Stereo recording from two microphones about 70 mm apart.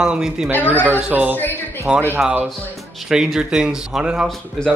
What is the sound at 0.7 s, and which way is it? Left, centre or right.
Speech, right.